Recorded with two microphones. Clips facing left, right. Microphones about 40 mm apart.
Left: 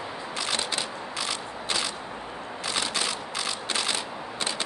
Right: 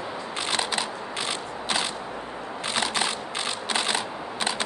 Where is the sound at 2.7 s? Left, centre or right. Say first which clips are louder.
Right 3 dB; right.